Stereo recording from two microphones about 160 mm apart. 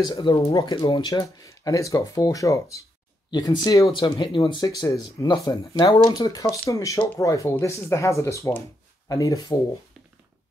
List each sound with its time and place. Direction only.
0.0 s speech: 30° left (ahead or behind)